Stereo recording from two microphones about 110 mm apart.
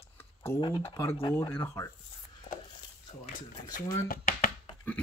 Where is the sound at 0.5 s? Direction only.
50° left (ahead or behind).